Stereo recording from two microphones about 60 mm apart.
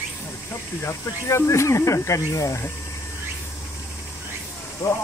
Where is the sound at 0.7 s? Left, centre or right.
Left.